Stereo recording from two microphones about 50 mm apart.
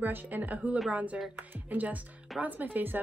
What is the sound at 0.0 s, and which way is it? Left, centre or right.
A woman's voice, right.